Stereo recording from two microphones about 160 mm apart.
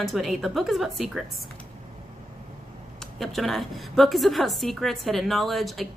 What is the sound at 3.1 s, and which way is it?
A woman's voice, centre (ahead or behind).